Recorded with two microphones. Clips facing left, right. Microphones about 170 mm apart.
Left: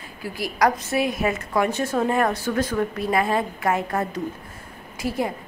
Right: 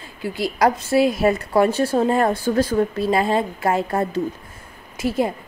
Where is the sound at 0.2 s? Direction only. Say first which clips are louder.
Right 3 dB; 25° right (ahead or behind).